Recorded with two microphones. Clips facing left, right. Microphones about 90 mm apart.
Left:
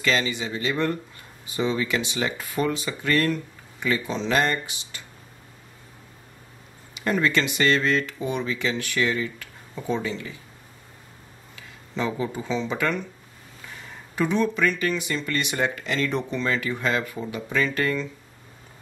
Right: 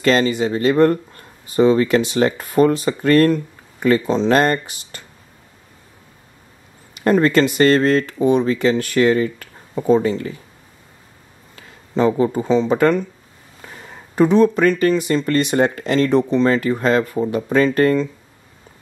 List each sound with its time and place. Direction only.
0.0 s speech: 45° right (ahead or behind)
6.9 s speech: 45° right (ahead or behind)
11.5 s speech: 40° right (ahead or behind)
14.1 s speech: 40° right (ahead or behind)